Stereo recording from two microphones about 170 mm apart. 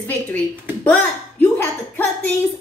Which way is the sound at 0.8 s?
10° left (ahead or behind).